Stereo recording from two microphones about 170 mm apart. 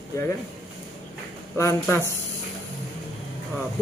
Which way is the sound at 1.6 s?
15° left (ahead or behind).